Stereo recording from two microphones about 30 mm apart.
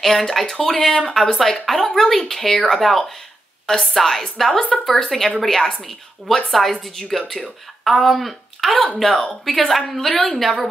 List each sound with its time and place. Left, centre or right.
0.0 s a woman's voice: centre
3.9 s a woman's voice: centre